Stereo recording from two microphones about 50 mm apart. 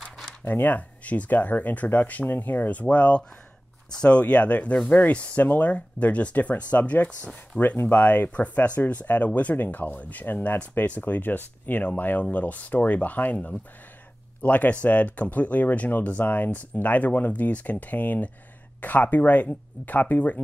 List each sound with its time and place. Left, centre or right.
0.5 s speech: left